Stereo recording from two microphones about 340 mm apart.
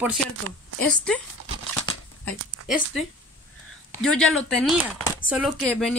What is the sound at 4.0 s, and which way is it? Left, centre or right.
Speech, centre.